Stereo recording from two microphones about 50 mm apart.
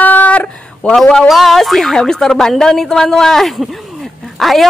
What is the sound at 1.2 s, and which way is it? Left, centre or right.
Speech, centre.